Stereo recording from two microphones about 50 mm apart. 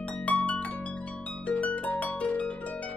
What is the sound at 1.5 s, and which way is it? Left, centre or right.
Harp, left.